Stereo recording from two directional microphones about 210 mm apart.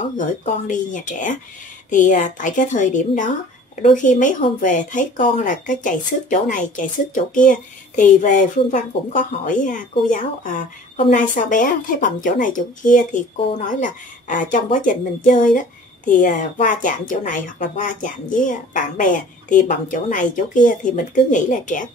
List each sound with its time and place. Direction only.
0.7 s speech: 35° left (ahead or behind)